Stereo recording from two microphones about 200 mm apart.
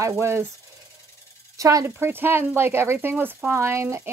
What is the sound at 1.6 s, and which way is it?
Speech, 15° right (ahead or behind).